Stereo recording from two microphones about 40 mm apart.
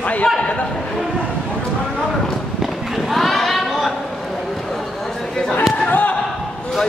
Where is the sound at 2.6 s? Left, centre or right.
Centre.